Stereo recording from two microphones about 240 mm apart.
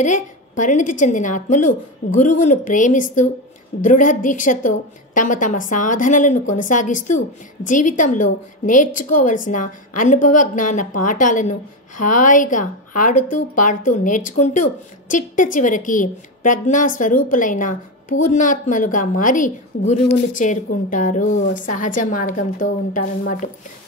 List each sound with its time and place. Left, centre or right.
0.0 s speech: left
20.0 s speech: left
20.3 s speech: left
21.4 s speech: left
21.6 s speech: left